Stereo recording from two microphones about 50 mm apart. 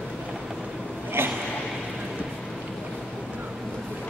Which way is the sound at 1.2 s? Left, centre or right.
Right.